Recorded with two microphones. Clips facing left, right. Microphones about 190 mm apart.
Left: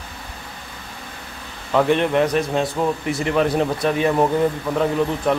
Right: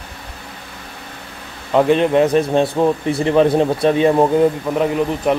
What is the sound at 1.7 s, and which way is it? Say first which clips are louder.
A man's voice: right 4 dB; 20° right (ahead or behind).